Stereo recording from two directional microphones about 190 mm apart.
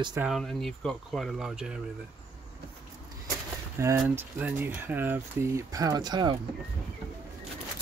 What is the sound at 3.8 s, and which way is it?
Speech, 15° right (ahead or behind).